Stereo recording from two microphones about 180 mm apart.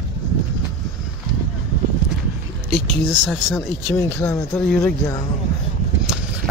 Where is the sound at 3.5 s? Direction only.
15° left (ahead or behind).